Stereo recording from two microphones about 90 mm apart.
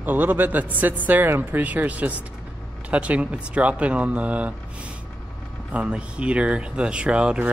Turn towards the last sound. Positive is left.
turn(degrees=-10)  # may be behind; listen again after turning